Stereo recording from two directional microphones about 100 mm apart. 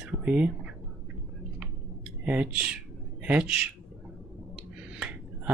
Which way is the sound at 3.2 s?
15° right (ahead or behind).